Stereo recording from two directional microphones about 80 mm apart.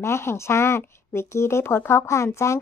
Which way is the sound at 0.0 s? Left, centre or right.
Left.